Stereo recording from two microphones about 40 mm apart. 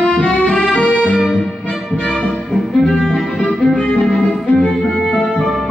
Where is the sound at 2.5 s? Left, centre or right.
Centre.